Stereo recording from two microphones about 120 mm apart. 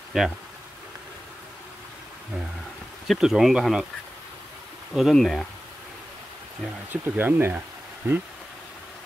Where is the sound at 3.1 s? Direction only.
Centre (ahead or behind).